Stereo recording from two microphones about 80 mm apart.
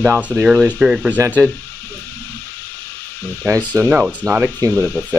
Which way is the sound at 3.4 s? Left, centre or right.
Right.